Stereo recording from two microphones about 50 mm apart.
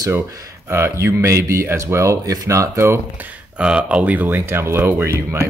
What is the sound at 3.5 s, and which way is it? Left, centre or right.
Speech, right.